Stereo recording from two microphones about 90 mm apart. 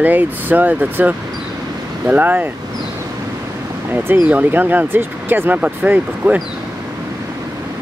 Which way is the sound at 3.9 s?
20° right (ahead or behind).